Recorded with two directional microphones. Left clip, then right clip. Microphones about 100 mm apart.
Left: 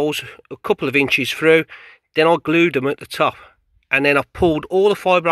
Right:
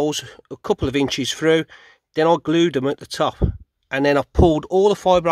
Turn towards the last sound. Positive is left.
turn(degrees=-35)  # may be behind; listen again after turning